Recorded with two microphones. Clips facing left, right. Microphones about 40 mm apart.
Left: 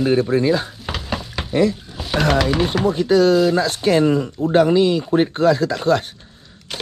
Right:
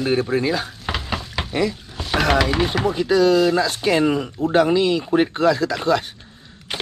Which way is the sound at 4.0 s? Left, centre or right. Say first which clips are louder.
Left 2 dB; right.